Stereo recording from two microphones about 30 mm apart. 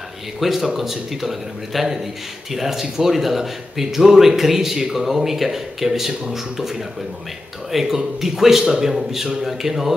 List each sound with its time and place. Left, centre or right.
0.4 s speech: centre
7.8 s a man's voice: centre
8.9 s speech: centre